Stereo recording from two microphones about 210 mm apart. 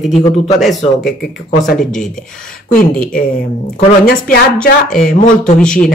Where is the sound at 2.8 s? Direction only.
45° left (ahead or behind).